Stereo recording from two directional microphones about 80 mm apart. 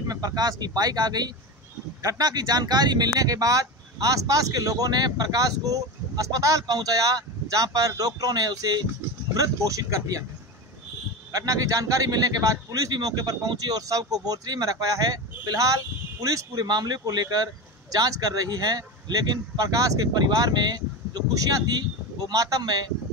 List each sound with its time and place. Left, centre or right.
0.0 s speech: right
11.3 s speech: right
20.1 s speech: right